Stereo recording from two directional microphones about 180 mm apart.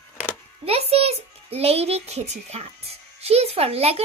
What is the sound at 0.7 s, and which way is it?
A child's voice, 35° right (ahead or behind).